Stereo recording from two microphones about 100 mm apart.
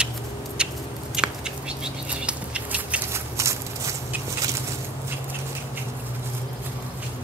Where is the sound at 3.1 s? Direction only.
30° right (ahead or behind).